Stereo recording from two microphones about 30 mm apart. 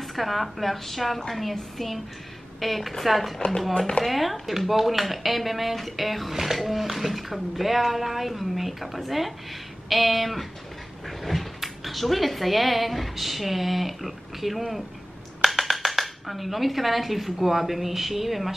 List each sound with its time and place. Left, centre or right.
0.0 s speech: centre
3.7 s speech: left
4.0 s speech: centre
15.4 s a sound: centre
17.4 s speech: centre